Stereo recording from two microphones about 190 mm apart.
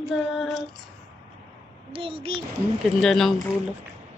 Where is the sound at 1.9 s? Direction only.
30° right (ahead or behind).